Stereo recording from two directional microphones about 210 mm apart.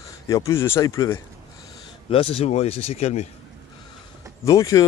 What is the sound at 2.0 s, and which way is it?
Speech, 25° left (ahead or behind).